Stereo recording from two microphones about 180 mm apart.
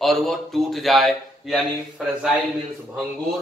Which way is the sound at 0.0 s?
Centre (ahead or behind).